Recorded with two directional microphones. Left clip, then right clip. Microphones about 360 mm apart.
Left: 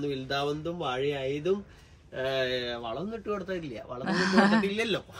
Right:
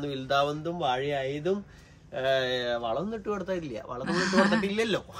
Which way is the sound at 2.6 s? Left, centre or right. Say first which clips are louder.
Right 5 dB; centre.